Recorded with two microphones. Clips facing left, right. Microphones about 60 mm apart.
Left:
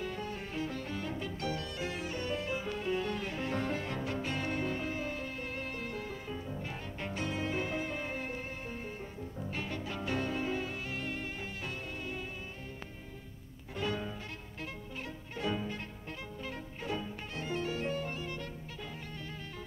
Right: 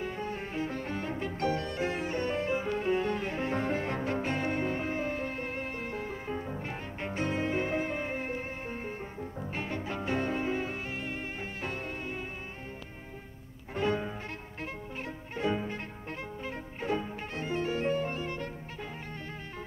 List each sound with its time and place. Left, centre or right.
0.0 s music: right
11.6 s music: right
13.7 s music: right